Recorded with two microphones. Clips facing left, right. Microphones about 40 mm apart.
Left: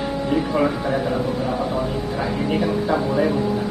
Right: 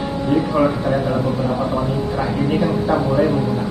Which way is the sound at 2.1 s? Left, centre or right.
Centre.